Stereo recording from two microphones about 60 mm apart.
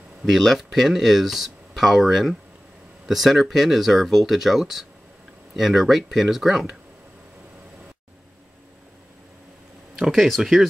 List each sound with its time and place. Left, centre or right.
0.2 s speech: centre
9.9 s speech: centre